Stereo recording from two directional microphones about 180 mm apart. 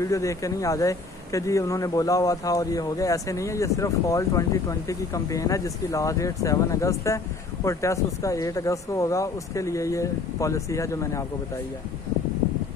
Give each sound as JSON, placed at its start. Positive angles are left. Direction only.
{"t": 0.0, "sound": "speech", "side_deg": 15}